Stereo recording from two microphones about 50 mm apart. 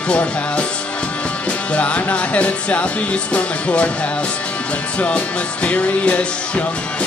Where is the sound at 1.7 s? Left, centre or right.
Left.